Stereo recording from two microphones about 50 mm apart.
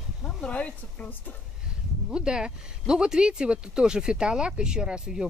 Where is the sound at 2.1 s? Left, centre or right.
Centre.